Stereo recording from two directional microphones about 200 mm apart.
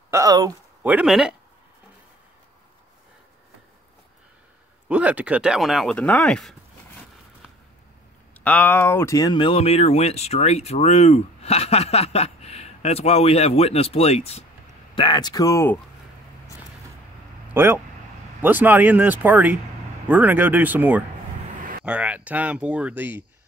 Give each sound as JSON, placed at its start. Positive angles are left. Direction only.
{"t": 0.1, "sound": "speech", "side_deg": -15}
{"t": 0.8, "sound": "speech", "side_deg": -5}
{"t": 4.8, "sound": "speech", "side_deg": -5}
{"t": 8.5, "sound": "speech", "side_deg": 10}
{"t": 17.6, "sound": "speech", "side_deg": -10}